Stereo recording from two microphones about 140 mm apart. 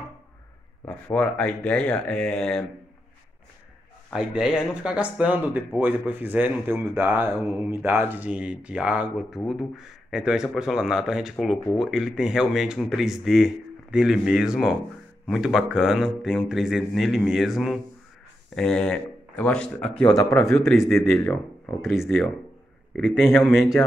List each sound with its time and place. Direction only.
0.8 s speech: 10° left (ahead or behind)
4.1 s speech: 5° right (ahead or behind)
20.2 s speech: 20° left (ahead or behind)
21.6 s speech: centre (ahead or behind)